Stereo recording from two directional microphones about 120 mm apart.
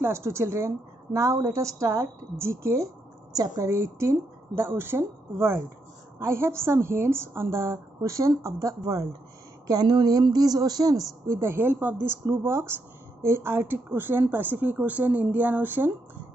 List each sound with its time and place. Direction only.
0.0 s a woman's voice: 20° right (ahead or behind)